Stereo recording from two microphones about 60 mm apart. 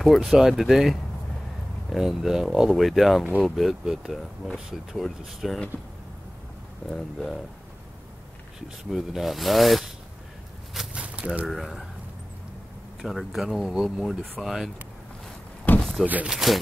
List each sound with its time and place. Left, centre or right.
0.0 s speech: centre
6.9 s speech: centre
8.9 s speech: centre
10.9 s a sound: centre
11.4 s speech: centre
13.0 s speech: centre
15.8 s a sound: centre
16.3 s speech: centre